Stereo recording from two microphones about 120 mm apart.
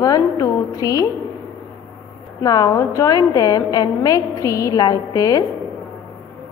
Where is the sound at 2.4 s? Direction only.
30° left (ahead or behind).